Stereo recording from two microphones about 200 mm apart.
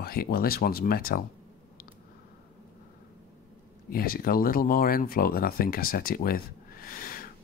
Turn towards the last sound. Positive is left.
turn(degrees=45)  # may be behind; listen again after turning